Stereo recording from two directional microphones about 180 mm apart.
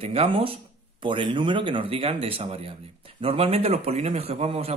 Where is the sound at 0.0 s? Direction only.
35° right (ahead or behind).